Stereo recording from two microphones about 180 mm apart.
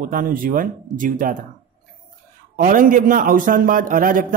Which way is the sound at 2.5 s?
50° right (ahead or behind).